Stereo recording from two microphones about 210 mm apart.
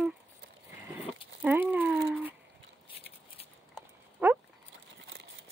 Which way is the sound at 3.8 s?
5° right (ahead or behind).